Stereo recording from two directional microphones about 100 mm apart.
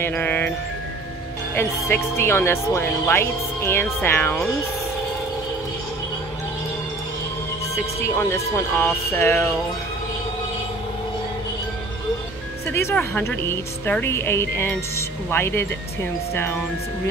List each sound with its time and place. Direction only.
0.0 s speech: 20° left (ahead or behind)
1.5 s speech: 20° left (ahead or behind)
7.7 s speech: 25° left (ahead or behind)
12.6 s music: 25° left (ahead or behind)
13.2 s speech: 25° left (ahead or behind)